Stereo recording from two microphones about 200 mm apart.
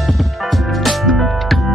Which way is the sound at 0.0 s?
Centre (ahead or behind).